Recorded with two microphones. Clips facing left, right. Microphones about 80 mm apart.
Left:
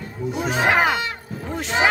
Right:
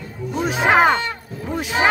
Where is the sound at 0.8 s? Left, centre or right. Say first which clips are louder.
Right 4 dB; centre.